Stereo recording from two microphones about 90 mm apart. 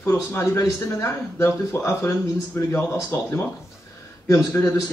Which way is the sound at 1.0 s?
30° left (ahead or behind).